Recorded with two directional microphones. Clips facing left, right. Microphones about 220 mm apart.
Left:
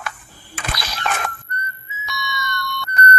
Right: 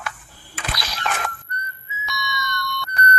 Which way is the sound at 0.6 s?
50° left (ahead or behind).